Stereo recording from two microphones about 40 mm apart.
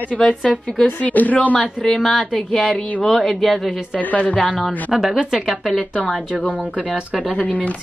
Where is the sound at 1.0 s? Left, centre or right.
Left.